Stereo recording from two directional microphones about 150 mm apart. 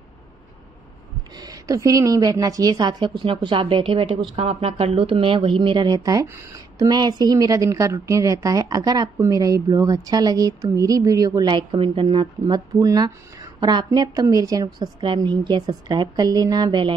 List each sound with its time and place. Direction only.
1.3 s speech: 25° right (ahead or behind)